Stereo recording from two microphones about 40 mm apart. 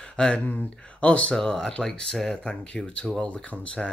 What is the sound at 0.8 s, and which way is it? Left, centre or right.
Speech, left.